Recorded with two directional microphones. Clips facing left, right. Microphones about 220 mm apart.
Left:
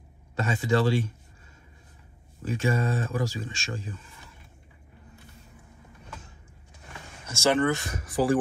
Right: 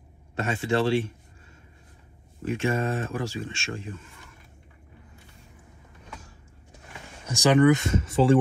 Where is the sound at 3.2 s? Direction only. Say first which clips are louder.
Right 2 dB; 40° left (ahead or behind).